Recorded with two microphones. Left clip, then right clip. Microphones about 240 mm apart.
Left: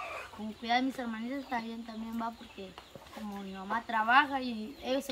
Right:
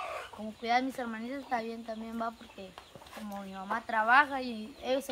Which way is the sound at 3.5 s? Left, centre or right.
Right.